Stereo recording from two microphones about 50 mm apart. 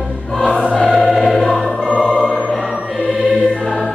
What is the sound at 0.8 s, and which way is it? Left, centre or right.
Choir, centre.